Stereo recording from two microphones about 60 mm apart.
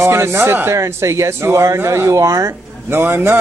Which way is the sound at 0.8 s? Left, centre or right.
Right.